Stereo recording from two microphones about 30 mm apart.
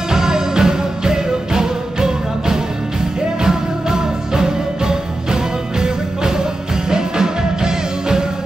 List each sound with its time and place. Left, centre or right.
0.1 s music: right